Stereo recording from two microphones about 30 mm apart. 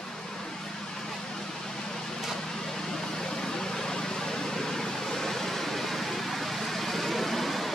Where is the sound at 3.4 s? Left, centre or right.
Centre.